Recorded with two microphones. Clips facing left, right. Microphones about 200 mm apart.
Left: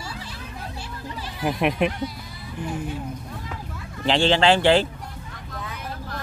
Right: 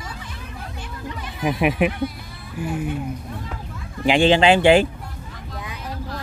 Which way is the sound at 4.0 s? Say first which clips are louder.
Right 4 dB; 15° right (ahead or behind).